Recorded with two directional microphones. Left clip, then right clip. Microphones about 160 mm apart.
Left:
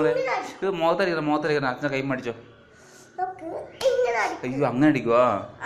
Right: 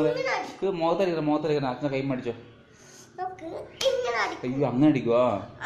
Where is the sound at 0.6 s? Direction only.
30° left (ahead or behind).